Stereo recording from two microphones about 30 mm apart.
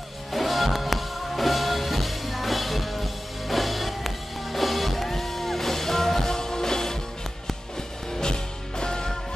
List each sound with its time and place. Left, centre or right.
0.3 s music: centre
8.1 s music: left